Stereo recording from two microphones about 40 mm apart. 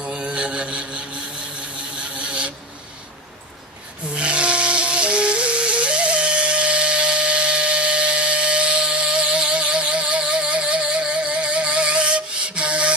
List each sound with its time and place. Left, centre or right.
0.0 s mantra: right
2.0 s printer: right
4.1 s music: right